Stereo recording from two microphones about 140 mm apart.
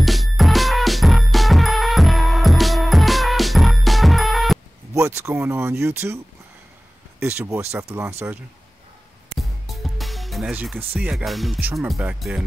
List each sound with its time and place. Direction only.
0.0 s music: centre (ahead or behind)
4.9 s speech: 20° right (ahead or behind)
7.2 s speech: 20° right (ahead or behind)
9.4 s music: centre (ahead or behind)
10.5 s speech: 10° right (ahead or behind)